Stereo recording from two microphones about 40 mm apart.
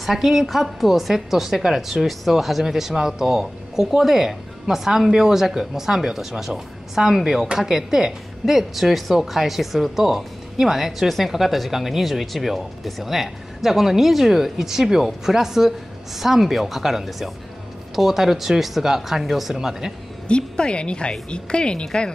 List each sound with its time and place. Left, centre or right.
0.0 s speech: centre
20.2 s a woman's voice: left